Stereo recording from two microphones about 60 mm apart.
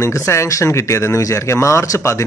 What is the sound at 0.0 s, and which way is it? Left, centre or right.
A man's voice, left.